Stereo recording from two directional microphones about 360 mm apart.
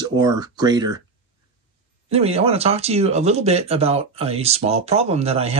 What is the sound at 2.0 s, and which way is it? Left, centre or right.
Speech, centre.